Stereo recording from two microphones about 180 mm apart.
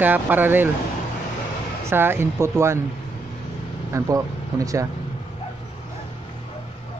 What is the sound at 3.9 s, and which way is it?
Speech, 20° right (ahead or behind).